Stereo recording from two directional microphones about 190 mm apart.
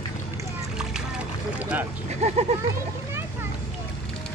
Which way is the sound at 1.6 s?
10° right (ahead or behind).